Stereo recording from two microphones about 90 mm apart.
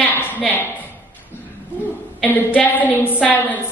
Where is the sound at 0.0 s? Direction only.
20° left (ahead or behind).